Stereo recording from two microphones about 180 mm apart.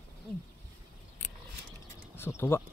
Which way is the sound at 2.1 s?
15° left (ahead or behind).